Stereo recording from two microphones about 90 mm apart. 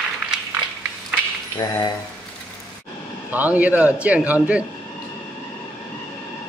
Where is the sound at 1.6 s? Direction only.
50° left (ahead or behind).